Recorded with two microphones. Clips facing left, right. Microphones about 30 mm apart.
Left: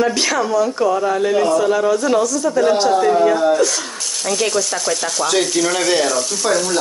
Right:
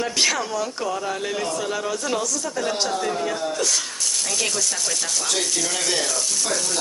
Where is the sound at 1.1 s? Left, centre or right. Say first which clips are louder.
Left 11 dB; centre.